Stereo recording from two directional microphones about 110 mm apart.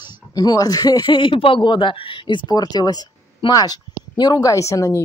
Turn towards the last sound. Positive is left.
turn(degrees=30)  # may be behind; listen again after turning